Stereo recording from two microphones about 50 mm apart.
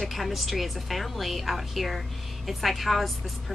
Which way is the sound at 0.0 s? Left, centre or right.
Centre.